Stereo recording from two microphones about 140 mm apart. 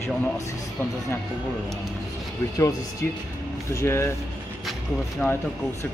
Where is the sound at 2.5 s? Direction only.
25° left (ahead or behind).